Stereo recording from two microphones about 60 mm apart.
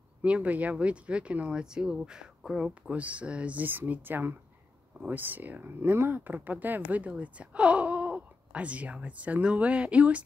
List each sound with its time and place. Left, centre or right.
0.2 s speech: right
2.9 s speech: right